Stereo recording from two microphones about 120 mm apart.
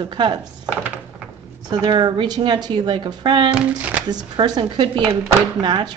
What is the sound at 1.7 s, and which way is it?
A woman's voice, 40° right (ahead or behind).